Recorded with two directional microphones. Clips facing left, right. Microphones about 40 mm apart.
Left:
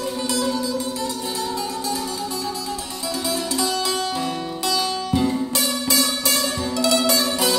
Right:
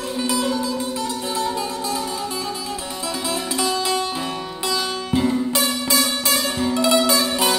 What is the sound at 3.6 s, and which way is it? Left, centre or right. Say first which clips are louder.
Music: right 4 dB; right.